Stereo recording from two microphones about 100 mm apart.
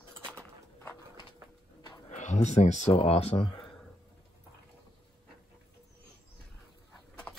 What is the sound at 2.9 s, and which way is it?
Speech, 90° left.